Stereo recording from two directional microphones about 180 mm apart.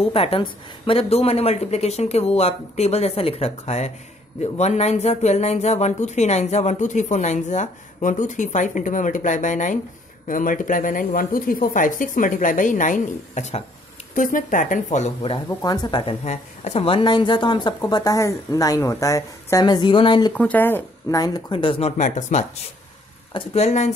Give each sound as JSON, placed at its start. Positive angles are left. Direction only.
{"t": 0.0, "sound": "speech", "side_deg": 30}
{"t": 15.6, "sound": "a woman's voice", "side_deg": 20}
{"t": 20.3, "sound": "a woman's voice", "side_deg": 10}